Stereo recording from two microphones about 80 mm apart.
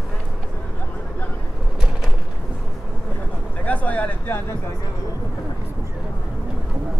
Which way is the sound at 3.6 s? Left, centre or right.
Centre.